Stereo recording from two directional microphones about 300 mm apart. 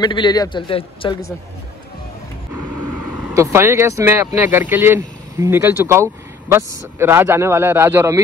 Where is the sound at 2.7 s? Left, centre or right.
Right.